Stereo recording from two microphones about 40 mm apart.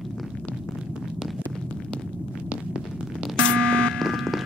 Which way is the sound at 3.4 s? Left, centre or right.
Left.